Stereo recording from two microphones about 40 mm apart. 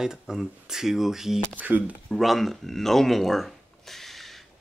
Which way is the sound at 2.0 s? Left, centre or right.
Centre.